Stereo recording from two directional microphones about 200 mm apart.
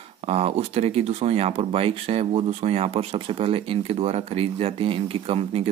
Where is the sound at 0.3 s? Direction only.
30° right (ahead or behind).